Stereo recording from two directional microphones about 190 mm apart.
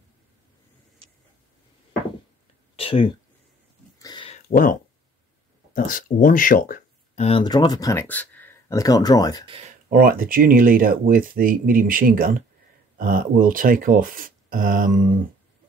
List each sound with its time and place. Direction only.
2.7 s a sound: 30° left (ahead or behind)
4.5 s speech: 45° left (ahead or behind)
7.2 s speech: 25° left (ahead or behind)
9.5 s speech: 35° right (ahead or behind)
9.8 s speech: 50° right (ahead or behind)